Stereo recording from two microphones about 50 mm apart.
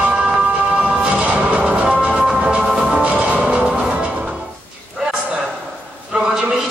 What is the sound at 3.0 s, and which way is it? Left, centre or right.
Music, right.